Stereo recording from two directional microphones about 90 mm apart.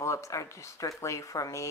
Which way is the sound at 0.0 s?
35° left (ahead or behind).